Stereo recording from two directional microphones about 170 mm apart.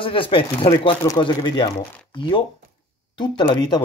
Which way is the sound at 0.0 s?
30° left (ahead or behind).